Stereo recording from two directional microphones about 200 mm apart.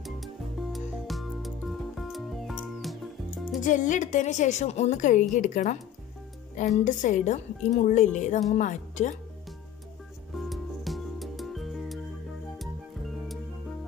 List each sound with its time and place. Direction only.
0.0 s music: centre (ahead or behind)
3.6 s a woman's voice: 40° left (ahead or behind)
6.8 s a woman's voice: 40° left (ahead or behind)
10.3 s music: centre (ahead or behind)